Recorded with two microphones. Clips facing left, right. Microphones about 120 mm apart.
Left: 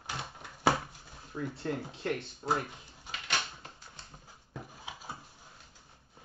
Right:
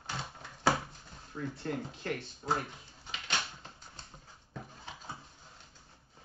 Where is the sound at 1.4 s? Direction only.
25° left (ahead or behind).